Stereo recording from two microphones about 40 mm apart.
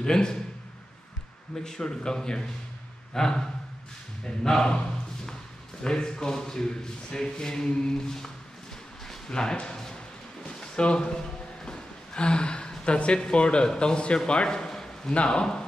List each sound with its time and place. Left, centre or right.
0.0 s speech: centre
1.5 s speech: centre
5.8 s speech: centre
9.3 s speech: centre
10.4 s a sound: left
12.8 s a man's voice: left